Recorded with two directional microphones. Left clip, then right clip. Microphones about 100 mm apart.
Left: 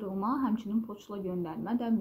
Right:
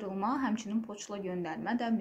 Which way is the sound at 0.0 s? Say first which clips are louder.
Left 1 dB; 15° left (ahead or behind).